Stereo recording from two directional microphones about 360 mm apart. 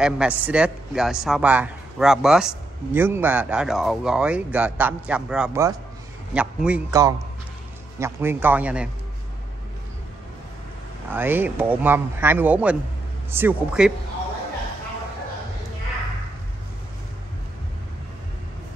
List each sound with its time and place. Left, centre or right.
0.0 s a man's voice: centre
11.1 s a man's voice: centre